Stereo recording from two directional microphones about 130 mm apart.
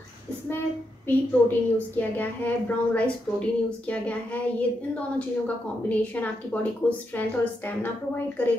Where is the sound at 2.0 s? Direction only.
15° left (ahead or behind).